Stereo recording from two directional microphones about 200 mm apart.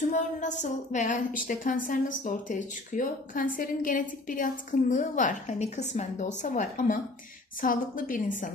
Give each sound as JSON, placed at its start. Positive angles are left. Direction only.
{"t": 0.1, "sound": "a woman's voice", "side_deg": 40}